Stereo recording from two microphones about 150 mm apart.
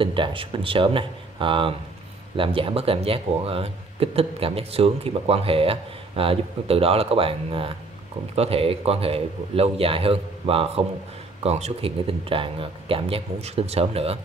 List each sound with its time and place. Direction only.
0.0 s speech: 35° right (ahead or behind)